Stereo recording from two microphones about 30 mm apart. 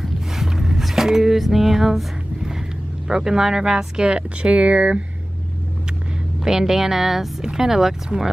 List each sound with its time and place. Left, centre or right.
0.0 s a sound: centre
1.3 s speech: centre
3.1 s speech: centre
4.1 s speech: right
6.4 s speech: centre